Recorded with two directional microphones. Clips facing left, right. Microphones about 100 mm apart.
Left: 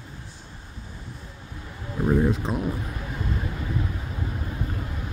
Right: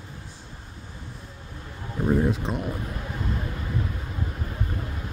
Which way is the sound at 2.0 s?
Centre (ahead or behind).